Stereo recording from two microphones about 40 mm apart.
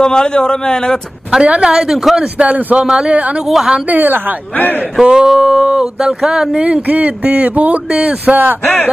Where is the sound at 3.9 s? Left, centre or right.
Right.